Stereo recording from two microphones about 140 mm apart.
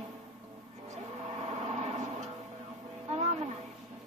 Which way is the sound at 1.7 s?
55° right (ahead or behind).